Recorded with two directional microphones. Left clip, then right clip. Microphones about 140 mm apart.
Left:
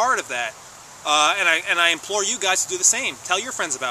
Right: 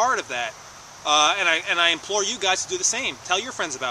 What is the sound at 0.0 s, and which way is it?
Speech, 5° left (ahead or behind).